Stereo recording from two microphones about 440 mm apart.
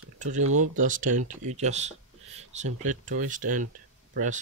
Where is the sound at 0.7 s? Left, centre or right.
Centre.